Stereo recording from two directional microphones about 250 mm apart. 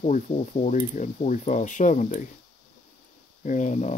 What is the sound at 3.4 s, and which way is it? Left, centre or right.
Speech, left.